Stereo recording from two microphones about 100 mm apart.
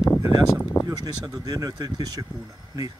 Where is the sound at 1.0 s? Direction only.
40° right (ahead or behind).